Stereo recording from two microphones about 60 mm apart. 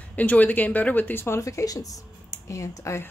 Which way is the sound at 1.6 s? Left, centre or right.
Left.